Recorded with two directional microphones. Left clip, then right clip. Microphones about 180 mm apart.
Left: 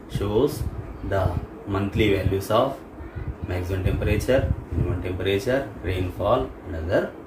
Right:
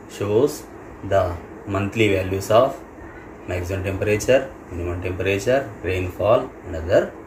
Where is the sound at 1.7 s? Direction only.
20° left (ahead or behind).